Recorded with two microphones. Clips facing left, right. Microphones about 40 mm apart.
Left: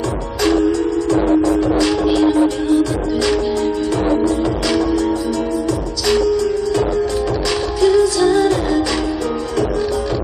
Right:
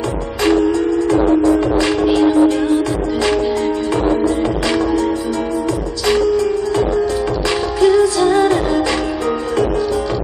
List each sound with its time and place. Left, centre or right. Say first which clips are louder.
0.4 s music: right 1 dB; right
7.8 s music: right 1 dB; right